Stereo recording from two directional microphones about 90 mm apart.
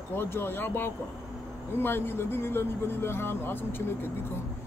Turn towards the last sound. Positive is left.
turn(degrees=25)  # may be behind; listen again after turning